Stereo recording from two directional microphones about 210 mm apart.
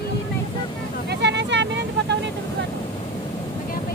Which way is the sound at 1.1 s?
55° right (ahead or behind).